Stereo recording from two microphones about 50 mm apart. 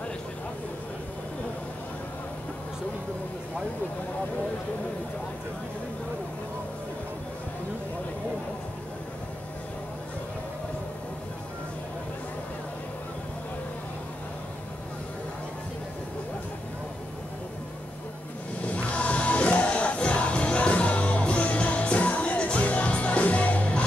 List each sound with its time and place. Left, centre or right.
18.6 s music: left